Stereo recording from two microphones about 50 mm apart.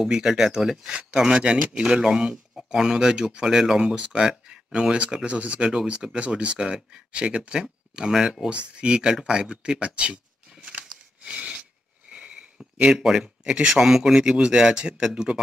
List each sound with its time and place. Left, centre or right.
0.0 s speech: centre
9.1 s a sound: centre
12.9 s speech: centre